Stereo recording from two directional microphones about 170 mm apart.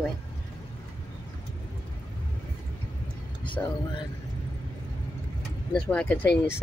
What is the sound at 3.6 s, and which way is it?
Speech, 10° left (ahead or behind).